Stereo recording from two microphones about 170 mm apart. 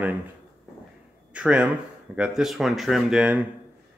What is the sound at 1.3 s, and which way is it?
Speech, 5° right (ahead or behind).